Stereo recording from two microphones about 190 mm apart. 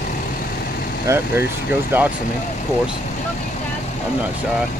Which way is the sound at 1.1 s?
15° right (ahead or behind).